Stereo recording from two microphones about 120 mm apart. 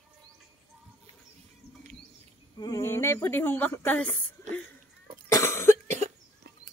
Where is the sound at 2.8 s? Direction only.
20° left (ahead or behind).